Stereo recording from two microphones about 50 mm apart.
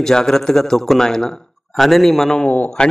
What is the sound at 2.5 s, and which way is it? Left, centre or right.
Speech, centre.